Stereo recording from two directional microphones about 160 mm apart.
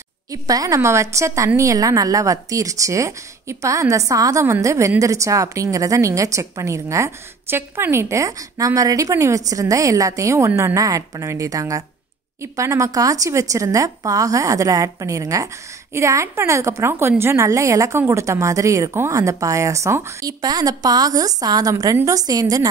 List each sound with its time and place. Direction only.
0.3 s speech: 20° right (ahead or behind)